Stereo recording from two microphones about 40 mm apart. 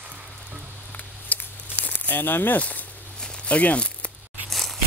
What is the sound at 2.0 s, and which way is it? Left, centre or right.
Speech, left.